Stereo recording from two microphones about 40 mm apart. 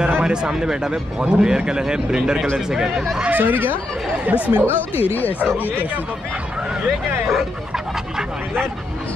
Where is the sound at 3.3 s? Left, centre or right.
Right.